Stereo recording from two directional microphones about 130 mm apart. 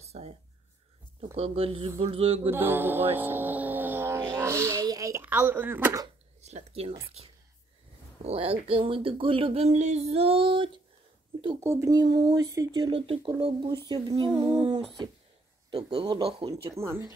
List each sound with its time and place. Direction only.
0.0 s a sound: 55° right (ahead or behind)
1.3 s speech: 50° right (ahead or behind)
2.5 s speech: 15° right (ahead or behind)
4.2 s a sound: 25° right (ahead or behind)
5.2 s speech: 15° right (ahead or behind)
6.4 s speech: 55° right (ahead or behind)
8.2 s speech: 50° right (ahead or behind)
11.6 s speech: 25° right (ahead or behind); by 14.5 s 45° right (ahead or behind)
15.7 s speech: 45° right (ahead or behind)
16.7 s speech: 20° right (ahead or behind)